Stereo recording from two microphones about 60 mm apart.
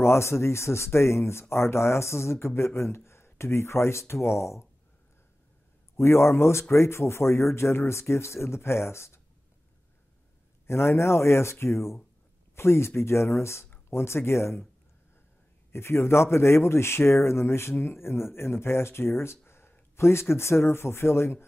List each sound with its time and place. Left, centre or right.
0.0 s speech: left
5.9 s speech: left
10.7 s speech: left
15.7 s speech: left